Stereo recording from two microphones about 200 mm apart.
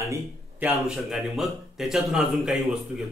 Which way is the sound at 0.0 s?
15° right (ahead or behind).